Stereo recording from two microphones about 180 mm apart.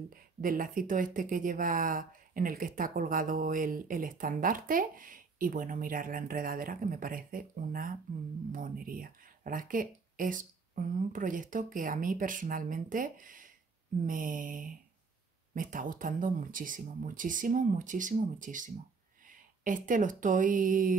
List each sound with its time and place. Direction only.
0.1 s speech: 50° right (ahead or behind)